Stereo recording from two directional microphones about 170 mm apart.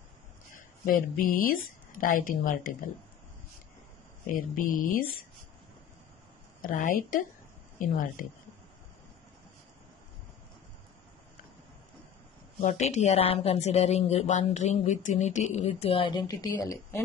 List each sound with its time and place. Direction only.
0.5 s a woman's voice: 55° left (ahead or behind)
4.4 s a woman's voice: 55° left (ahead or behind)
6.6 s a woman's voice: 50° left (ahead or behind)
12.6 s speech: 45° left (ahead or behind); by 17.0 s 20° left (ahead or behind)